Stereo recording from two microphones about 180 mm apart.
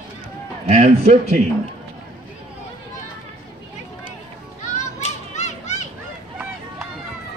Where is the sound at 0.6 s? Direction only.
35° right (ahead or behind).